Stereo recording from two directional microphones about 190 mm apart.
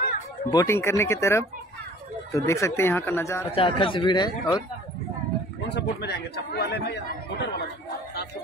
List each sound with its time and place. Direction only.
0.5 s speech: 15° left (ahead or behind)
3.5 s speech: 25° left (ahead or behind)
5.8 s speech: 60° left (ahead or behind)